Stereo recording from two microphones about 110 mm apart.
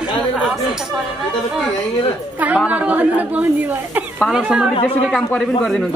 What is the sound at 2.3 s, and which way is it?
Speech, 15° right (ahead or behind).